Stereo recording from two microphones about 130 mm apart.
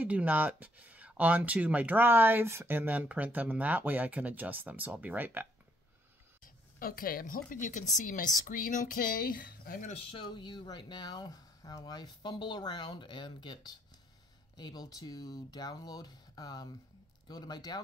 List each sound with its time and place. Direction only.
0.0 s speech: 10° right (ahead or behind)
6.4 s a woman's voice: 90° left
9.9 s speech: 45° left (ahead or behind)